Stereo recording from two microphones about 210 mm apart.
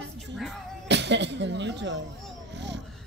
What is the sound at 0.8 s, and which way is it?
Speech, 55° right (ahead or behind).